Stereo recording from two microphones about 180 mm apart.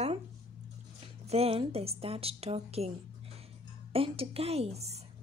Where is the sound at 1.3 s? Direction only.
35° right (ahead or behind).